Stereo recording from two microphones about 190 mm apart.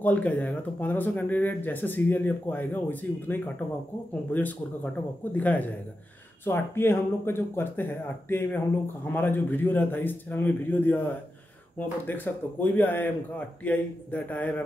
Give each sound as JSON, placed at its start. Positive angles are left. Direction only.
{"t": 0.0, "sound": "speech", "side_deg": 5}
{"t": 12.1, "sound": "speech", "side_deg": 10}